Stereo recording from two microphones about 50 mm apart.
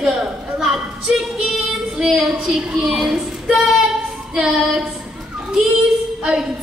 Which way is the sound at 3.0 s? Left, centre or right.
Centre.